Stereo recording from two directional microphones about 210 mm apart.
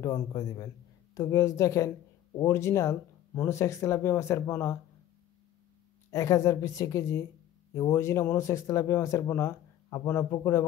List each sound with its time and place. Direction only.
0.0 s speech: 15° left (ahead or behind)
6.1 s speech: 15° left (ahead or behind)